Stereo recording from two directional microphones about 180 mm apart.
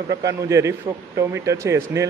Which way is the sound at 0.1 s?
20° right (ahead or behind).